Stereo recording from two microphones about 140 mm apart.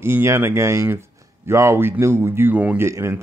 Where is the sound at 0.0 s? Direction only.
20° right (ahead or behind).